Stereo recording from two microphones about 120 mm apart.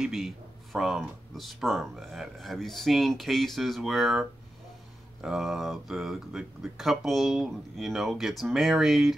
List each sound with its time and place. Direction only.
0.0 s speech: 5° right (ahead or behind)